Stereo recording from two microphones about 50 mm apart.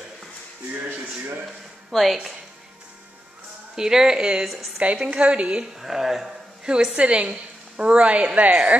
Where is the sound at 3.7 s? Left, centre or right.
Centre.